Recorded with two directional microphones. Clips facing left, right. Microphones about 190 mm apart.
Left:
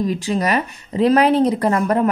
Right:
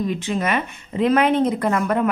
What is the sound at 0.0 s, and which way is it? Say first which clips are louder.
Speech: left 3 dB; 40° left (ahead or behind).